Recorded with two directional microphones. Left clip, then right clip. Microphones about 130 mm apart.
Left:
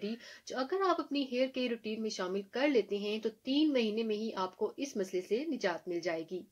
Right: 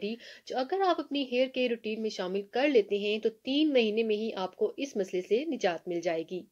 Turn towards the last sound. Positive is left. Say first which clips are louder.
# right 5 dB
turn(degrees=-25)  # may be behind; listen again after turning